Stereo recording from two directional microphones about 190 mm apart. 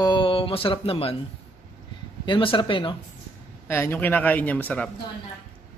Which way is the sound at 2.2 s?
25° left (ahead or behind).